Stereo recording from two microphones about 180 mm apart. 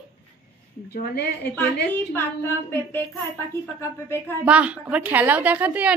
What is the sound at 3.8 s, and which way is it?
Speech, 15° left (ahead or behind).